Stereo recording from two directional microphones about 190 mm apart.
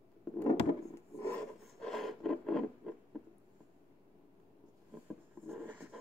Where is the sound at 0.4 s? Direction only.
10° left (ahead or behind).